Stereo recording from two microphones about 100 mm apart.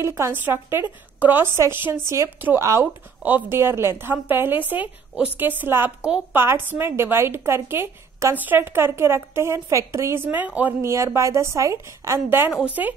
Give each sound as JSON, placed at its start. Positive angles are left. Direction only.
{"t": 0.0, "sound": "a woman's voice", "side_deg": -30}
{"t": 10.8, "sound": "a woman's voice", "side_deg": -30}